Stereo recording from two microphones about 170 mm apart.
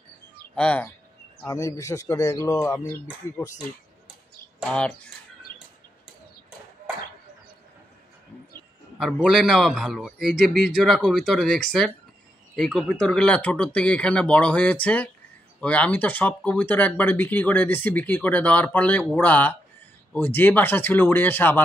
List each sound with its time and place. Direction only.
0.6 s speech: 5° left (ahead or behind)
1.5 s a man's voice: 20° left (ahead or behind)
4.6 s speech: 5° left (ahead or behind)
8.9 s a man's voice: 5° right (ahead or behind)